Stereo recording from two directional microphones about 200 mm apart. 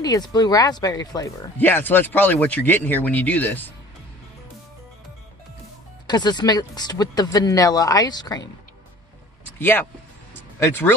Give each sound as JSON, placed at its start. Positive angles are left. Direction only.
{"t": 0.0, "sound": "speech", "side_deg": 20}
{"t": 6.0, "sound": "speech", "side_deg": 20}
{"t": 9.6, "sound": "speech", "side_deg": 10}